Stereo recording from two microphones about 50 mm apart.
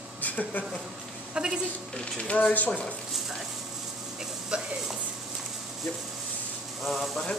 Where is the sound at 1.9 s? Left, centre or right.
Left.